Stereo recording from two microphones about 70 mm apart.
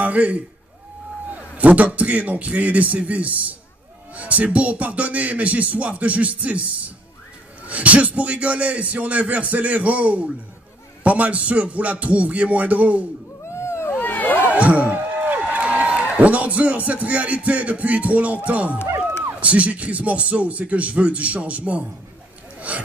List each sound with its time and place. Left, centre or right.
0.0 s a man's voice: right
7.6 s speech: centre
13.5 s cat: left
14.5 s a man's voice: right